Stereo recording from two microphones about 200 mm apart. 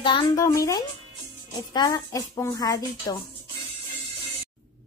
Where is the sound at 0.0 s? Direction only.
25° left (ahead or behind).